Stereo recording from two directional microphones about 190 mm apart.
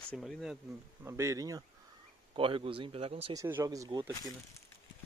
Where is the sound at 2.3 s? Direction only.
30° right (ahead or behind).